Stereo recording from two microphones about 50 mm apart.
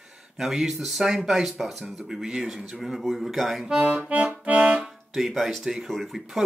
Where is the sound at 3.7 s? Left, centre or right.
Centre.